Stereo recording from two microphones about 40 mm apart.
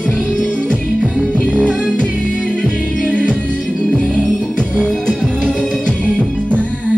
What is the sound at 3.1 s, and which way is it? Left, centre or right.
Music, left.